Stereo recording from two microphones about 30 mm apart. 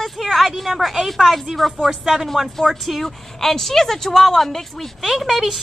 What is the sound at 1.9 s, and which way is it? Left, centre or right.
Speech, centre.